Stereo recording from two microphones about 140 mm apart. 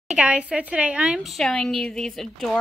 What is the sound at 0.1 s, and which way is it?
Speech, 10° right (ahead or behind).